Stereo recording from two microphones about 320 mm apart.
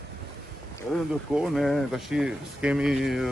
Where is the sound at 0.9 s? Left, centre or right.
Centre.